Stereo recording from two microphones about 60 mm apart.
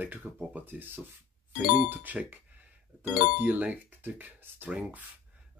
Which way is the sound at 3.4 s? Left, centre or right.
Right.